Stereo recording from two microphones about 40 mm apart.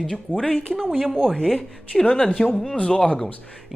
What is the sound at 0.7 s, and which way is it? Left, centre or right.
Speech, centre.